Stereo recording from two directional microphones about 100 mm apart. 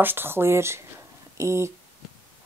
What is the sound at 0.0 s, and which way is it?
Speech, 20° right (ahead or behind).